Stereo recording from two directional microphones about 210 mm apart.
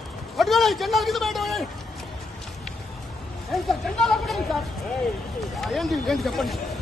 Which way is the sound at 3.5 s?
Centre (ahead or behind).